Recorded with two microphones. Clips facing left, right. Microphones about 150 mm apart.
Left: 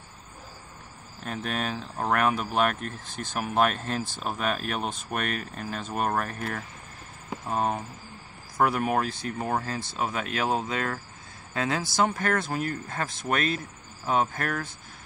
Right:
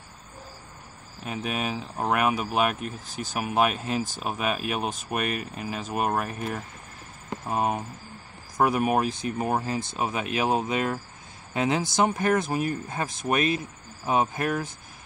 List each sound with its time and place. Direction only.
1.2 s speech: 10° right (ahead or behind)